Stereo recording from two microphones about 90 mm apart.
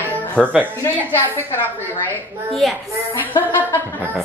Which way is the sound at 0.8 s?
35° left (ahead or behind).